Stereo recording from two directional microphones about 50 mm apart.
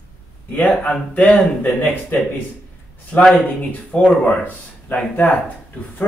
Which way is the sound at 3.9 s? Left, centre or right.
Left.